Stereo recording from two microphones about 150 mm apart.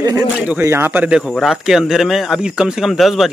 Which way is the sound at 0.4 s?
10° right (ahead or behind).